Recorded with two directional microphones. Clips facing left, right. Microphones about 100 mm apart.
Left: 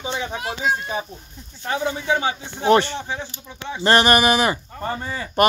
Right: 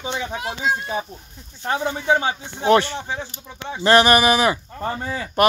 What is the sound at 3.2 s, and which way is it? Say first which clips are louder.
Speech: even; 40° right (ahead or behind).